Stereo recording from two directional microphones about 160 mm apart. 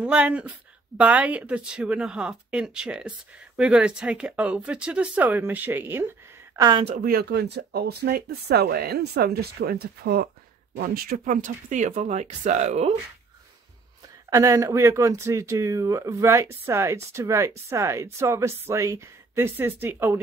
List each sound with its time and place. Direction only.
0.0 s speech: 10° right (ahead or behind)
7.0 s speech: 75° right (ahead or behind)
11.0 s speech: 60° right (ahead or behind)
14.3 s speech: 20° right (ahead or behind)